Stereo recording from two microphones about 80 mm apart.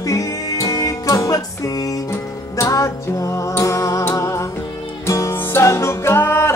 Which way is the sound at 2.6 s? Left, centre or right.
Left.